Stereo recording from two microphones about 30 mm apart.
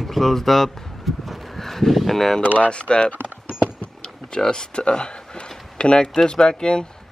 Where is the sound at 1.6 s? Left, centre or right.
Centre.